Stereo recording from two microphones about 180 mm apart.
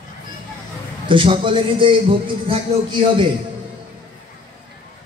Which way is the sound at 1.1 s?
30° right (ahead or behind).